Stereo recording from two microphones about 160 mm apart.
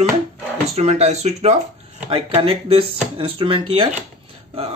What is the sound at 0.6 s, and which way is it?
Speech, 45° right (ahead or behind).